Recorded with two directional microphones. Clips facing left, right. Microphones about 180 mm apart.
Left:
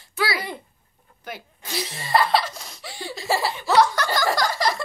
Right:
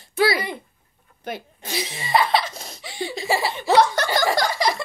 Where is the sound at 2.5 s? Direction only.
25° right (ahead or behind).